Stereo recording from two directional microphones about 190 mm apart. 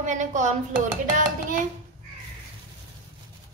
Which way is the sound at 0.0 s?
40° right (ahead or behind).